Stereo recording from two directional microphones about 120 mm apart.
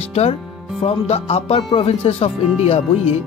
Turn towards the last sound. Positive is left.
turn(degrees=55)  # may be behind; listen again after turning